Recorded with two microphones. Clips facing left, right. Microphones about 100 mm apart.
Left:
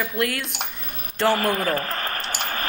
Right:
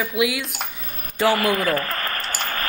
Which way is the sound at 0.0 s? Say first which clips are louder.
Right 3 dB; 5° right (ahead or behind).